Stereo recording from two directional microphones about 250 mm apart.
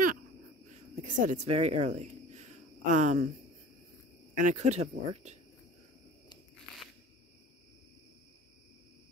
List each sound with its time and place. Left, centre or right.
1.0 s speech: right
4.4 s speech: right